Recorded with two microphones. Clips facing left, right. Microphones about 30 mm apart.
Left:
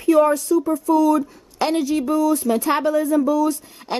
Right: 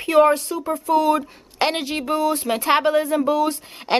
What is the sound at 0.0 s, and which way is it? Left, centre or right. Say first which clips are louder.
A woman's voice: even; right.